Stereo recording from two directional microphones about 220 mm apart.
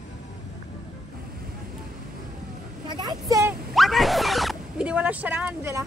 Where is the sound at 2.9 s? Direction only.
20° right (ahead or behind).